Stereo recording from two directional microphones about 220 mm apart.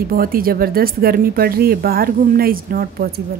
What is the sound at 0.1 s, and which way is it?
Speech, 40° right (ahead or behind).